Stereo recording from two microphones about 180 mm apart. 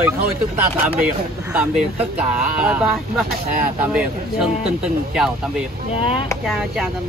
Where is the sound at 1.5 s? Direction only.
5° right (ahead or behind).